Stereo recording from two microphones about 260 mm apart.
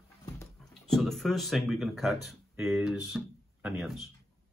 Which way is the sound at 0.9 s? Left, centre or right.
Centre.